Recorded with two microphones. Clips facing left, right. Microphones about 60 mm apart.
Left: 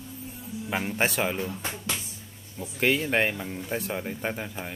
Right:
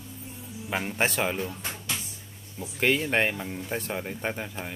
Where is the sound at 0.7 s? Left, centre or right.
Centre.